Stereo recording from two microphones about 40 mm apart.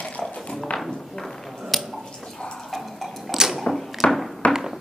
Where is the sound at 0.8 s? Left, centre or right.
Centre.